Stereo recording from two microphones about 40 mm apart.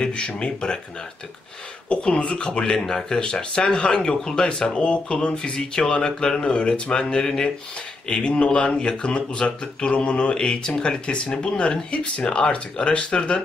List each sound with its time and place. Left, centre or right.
0.0 s speech: left
1.9 s speech: left